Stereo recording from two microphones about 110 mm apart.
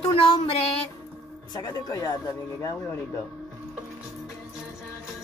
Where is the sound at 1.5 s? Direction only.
40° left (ahead or behind).